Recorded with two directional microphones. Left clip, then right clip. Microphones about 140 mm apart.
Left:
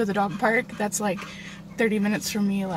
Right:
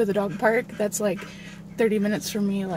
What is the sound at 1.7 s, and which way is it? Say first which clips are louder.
Speech: right 1 dB; 30° right (ahead or behind).